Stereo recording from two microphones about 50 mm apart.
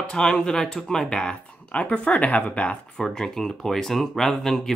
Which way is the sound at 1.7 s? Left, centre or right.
Left.